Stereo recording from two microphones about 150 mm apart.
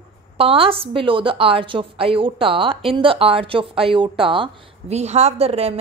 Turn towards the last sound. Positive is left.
turn(degrees=-40)  # may be behind; listen again after turning